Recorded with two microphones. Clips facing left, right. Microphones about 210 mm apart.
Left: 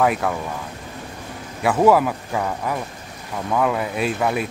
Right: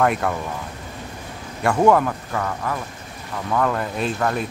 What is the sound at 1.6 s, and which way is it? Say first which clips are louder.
Speech: left 1 dB; 5° left (ahead or behind).